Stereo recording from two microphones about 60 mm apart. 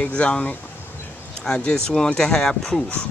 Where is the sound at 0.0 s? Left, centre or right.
Left.